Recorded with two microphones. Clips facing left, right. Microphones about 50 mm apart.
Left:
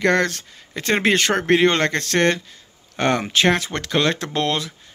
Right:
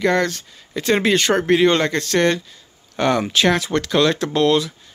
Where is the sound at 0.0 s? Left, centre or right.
Left.